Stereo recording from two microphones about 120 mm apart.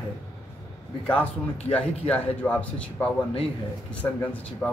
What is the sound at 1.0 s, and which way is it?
A man's voice, 15° left (ahead or behind).